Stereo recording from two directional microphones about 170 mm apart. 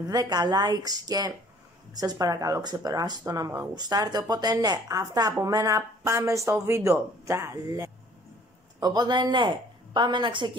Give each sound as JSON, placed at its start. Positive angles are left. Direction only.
{"t": 0.0, "sound": "speech", "side_deg": -25}